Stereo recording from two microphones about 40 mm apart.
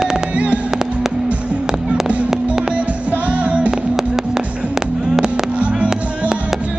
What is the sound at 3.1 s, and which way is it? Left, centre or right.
Music, right.